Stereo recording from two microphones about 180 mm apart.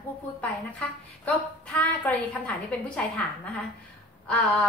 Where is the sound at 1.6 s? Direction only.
10° left (ahead or behind).